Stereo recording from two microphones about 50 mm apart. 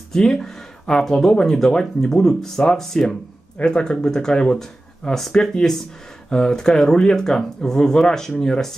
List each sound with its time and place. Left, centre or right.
0.1 s speech: centre
3.5 s speech: centre